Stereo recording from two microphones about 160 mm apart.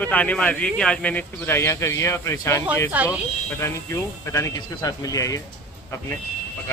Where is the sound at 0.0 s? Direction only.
10° left (ahead or behind).